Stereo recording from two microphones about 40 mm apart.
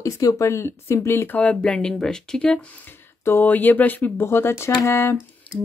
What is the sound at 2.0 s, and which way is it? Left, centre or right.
Speech, centre.